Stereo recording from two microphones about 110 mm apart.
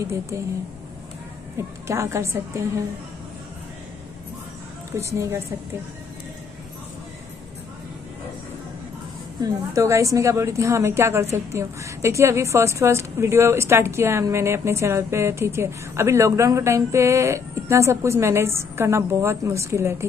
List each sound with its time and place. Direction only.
1.9 s a woman's voice: 25° right (ahead or behind)
4.9 s a woman's voice: 30° right (ahead or behind)
9.4 s a woman's voice: 30° right (ahead or behind)